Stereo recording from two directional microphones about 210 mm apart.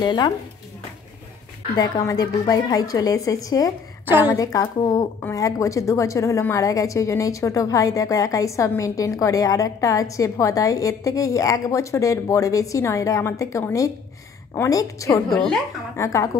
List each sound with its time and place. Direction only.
0.0 s speech: 20° left (ahead or behind)
1.8 s a woman's voice: 15° left (ahead or behind)
15.2 s a woman's voice: centre (ahead or behind)
16.0 s a woman's voice: 15° left (ahead or behind)